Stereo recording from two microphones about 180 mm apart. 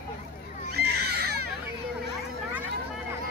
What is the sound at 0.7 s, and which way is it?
Baby cry, 65° right (ahead or behind).